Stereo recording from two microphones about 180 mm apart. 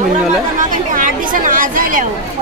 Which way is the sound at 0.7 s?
45° right (ahead or behind).